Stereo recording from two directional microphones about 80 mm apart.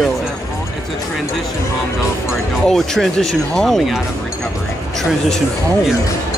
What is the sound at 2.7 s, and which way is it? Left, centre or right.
Speech, centre.